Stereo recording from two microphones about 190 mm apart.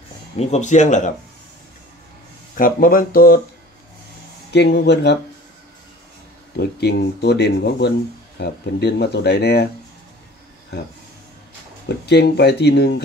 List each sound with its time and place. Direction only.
0.4 s speech: 35° left (ahead or behind)
2.5 s speech: 45° left (ahead or behind)
4.5 s speech: 60° left (ahead or behind)
6.6 s speech: 60° left (ahead or behind)
12.1 s speech: 60° left (ahead or behind)